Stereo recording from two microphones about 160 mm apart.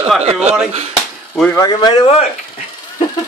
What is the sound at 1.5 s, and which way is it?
Speech, 25° left (ahead or behind).